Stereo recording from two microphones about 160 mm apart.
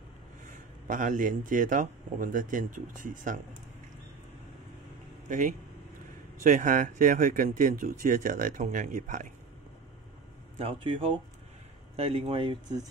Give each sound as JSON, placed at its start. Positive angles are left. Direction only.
{"t": 0.8, "sound": "speech", "side_deg": -55}
{"t": 6.4, "sound": "speech", "side_deg": -55}
{"t": 10.6, "sound": "speech", "side_deg": -35}